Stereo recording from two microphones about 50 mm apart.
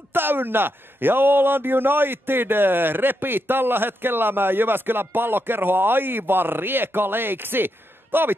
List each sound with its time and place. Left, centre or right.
0.1 s speech: right